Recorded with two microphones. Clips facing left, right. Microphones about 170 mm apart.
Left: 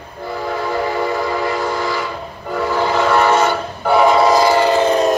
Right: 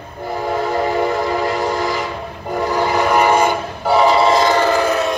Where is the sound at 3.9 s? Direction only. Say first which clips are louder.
Left 1 dB; centre (ahead or behind).